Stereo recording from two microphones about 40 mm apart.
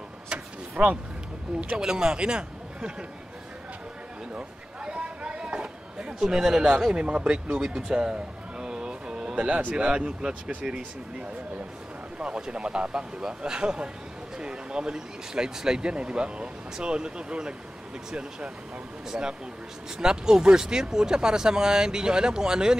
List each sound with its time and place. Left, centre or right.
0.8 s speech: right
1.8 s a man's voice: centre
4.4 s a sound: right
6.2 s a man's voice: centre
7.7 s a sound: right
9.6 s speech: right
9.8 s speech: right
19.0 s a man's voice: centre